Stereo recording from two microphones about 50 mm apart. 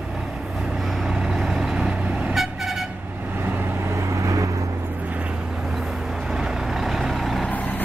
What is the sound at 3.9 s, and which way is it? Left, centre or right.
Vehicle, right.